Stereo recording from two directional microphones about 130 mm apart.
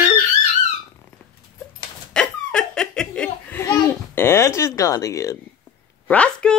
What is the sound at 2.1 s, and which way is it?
Laughter, 5° left (ahead or behind).